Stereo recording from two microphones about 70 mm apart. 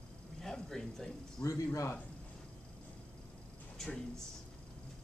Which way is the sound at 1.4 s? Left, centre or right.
Left.